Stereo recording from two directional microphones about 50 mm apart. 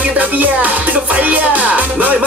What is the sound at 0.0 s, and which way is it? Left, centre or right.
Music, right.